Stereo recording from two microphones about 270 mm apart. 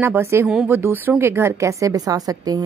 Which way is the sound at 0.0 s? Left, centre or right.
Centre.